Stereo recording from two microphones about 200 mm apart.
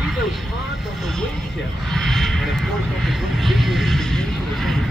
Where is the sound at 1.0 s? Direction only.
Centre (ahead or behind).